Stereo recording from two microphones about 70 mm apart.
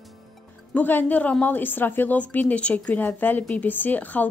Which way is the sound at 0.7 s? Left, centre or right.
Left.